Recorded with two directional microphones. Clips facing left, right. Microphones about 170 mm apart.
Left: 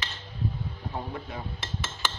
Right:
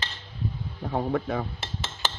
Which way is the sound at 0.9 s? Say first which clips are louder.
Right 11 dB; 75° right (ahead or behind).